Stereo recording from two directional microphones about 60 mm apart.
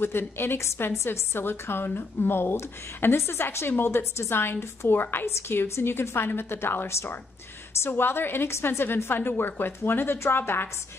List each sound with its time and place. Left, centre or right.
0.0 s a woman's voice: left